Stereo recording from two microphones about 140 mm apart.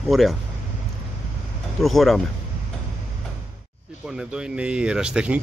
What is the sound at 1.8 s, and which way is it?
Speech, centre (ahead or behind).